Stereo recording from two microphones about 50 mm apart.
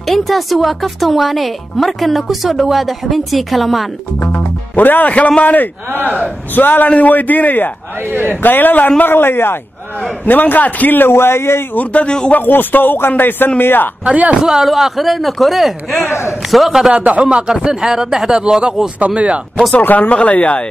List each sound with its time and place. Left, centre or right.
0.0 s speech: centre
4.2 s a man's voice: left
8.1 s a man's voice: right
8.4 s a man's voice: left
10.2 s a man's voice: left
11.7 s speech: left
12.3 s a man's voice: left
14.4 s speech: centre
16.1 s a man's voice: left
16.4 s speech: centre
16.9 s speech: right
18.9 s speech: right
19.7 s speech: left